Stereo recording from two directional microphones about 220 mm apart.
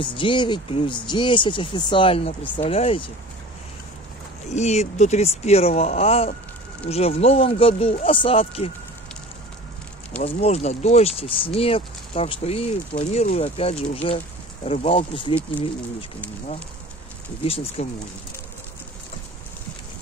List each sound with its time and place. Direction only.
0.0 s speech: 20° left (ahead or behind)
4.5 s speech: 30° left (ahead or behind)
10.2 s speech: 30° left (ahead or behind)
17.4 s speech: 25° left (ahead or behind)